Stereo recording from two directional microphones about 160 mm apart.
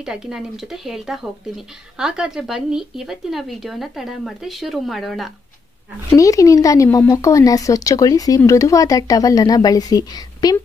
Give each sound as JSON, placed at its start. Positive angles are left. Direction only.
{"t": 0.0, "sound": "speech", "side_deg": -5}
{"t": 6.1, "sound": "speech", "side_deg": 20}